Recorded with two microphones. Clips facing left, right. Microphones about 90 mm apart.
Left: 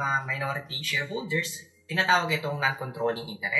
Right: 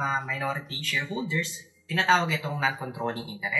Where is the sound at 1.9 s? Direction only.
10° left (ahead or behind).